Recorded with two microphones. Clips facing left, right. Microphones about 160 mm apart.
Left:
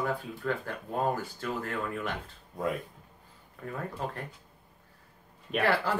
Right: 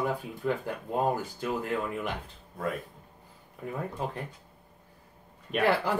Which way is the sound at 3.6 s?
15° right (ahead or behind).